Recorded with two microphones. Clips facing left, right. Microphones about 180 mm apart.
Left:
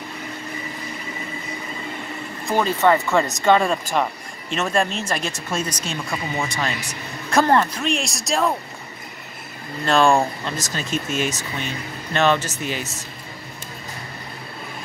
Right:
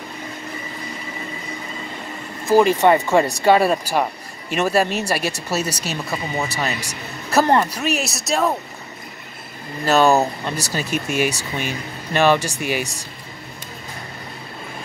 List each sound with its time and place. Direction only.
2.4 s speech: 5° right (ahead or behind)
2.8 s speech: 15° right (ahead or behind)
9.8 s speech: 5° right (ahead or behind)